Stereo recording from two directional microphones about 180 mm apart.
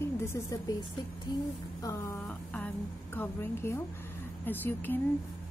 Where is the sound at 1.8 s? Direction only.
15° left (ahead or behind).